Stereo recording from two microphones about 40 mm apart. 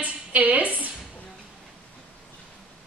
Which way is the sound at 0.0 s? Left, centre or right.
Right.